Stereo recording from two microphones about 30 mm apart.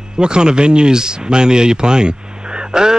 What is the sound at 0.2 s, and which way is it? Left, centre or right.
Speech, right.